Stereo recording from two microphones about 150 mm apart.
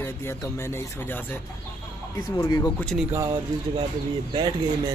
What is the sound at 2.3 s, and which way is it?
Speech, 25° left (ahead or behind).